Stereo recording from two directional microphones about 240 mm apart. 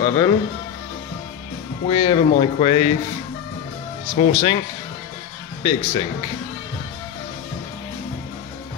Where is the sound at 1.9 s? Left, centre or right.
Left.